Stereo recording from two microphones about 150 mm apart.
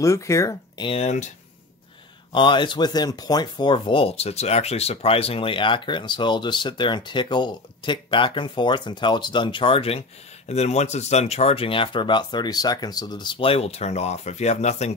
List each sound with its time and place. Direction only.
0.0 s speech: 20° left (ahead or behind)
0.8 s speech: 45° left (ahead or behind)
2.3 s speech: 30° left (ahead or behind); by 15.0 s 50° left (ahead or behind)